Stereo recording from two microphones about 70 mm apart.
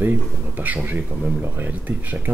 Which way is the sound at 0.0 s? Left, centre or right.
Right.